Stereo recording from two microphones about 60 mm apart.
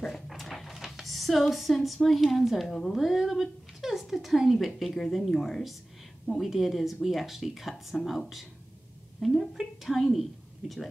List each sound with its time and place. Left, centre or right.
0.0 s a sound: centre
2.0 s speech: centre
3.0 s speech: centre
9.2 s speech: centre